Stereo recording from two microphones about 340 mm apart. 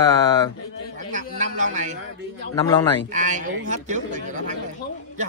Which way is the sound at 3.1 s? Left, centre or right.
Right.